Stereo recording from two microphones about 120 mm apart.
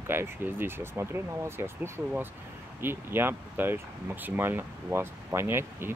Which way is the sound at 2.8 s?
20° right (ahead or behind).